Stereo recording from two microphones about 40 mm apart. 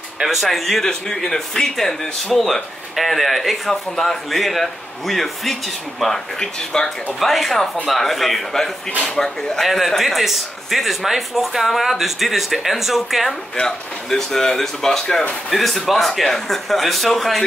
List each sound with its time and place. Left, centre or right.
0.2 s a man's voice: centre
6.4 s speech: centre
7.2 s a man's voice: centre
13.6 s a man's voice: centre